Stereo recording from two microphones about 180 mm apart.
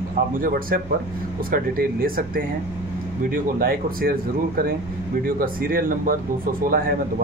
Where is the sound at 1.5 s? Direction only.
55° right (ahead or behind).